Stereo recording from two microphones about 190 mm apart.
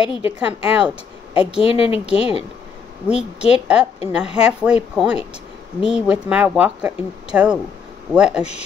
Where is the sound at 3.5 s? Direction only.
5° right (ahead or behind).